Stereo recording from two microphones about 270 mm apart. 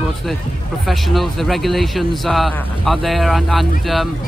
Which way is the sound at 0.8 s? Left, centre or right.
Centre.